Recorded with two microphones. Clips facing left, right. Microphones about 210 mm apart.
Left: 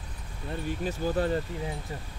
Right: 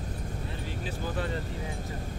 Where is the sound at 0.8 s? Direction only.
40° left (ahead or behind).